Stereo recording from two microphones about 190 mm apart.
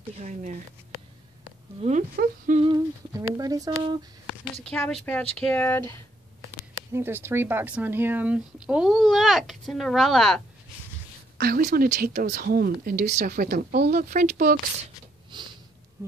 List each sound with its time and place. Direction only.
0.1 s speech: 35° right (ahead or behind)
1.8 s speech: 35° right (ahead or behind)
2.6 s humming: 20° right (ahead or behind)
4.6 s speech: 5° left (ahead or behind)
6.9 s speech: 10° right (ahead or behind)
11.3 s speech: 50° right (ahead or behind)
15.3 s sniff: 25° right (ahead or behind)